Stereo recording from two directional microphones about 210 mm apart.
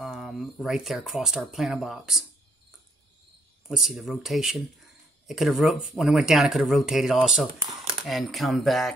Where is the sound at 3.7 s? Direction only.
Centre (ahead or behind).